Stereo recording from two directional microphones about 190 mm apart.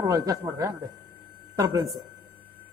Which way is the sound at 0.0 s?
20° right (ahead or behind).